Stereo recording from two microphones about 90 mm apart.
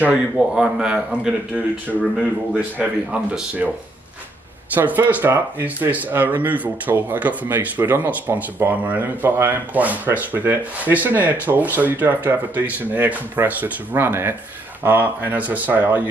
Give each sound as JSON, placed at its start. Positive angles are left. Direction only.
{"t": 0.0, "sound": "a man's voice", "side_deg": -10}
{"t": 1.9, "sound": "speech", "side_deg": 10}
{"t": 2.5, "sound": "a man's voice", "side_deg": -15}
{"t": 4.7, "sound": "speech", "side_deg": -20}